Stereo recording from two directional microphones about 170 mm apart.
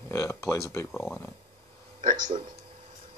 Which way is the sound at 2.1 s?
45° right (ahead or behind).